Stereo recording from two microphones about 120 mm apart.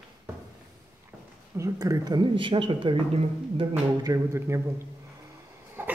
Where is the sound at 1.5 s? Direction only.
30° right (ahead or behind); by 2.9 s 45° right (ahead or behind).